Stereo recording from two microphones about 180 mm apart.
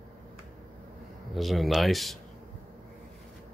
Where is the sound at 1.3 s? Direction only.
Centre (ahead or behind).